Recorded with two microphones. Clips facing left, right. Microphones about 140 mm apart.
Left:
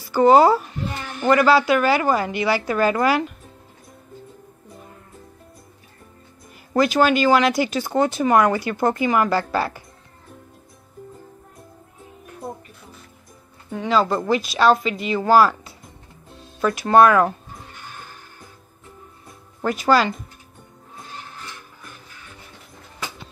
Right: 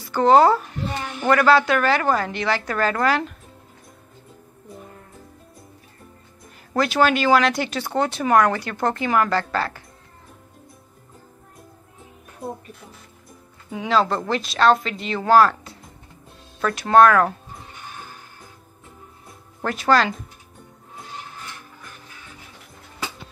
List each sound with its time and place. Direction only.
0.0 s a woman's voice: 5° left (ahead or behind)
6.7 s speech: centre (ahead or behind)
13.7 s speech: centre (ahead or behind)
19.6 s speech: 5° left (ahead or behind)